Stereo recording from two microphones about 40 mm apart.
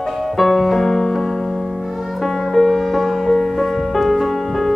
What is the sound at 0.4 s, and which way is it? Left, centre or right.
Music, centre.